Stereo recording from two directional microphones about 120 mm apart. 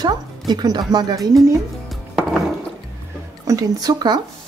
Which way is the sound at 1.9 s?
Centre (ahead or behind).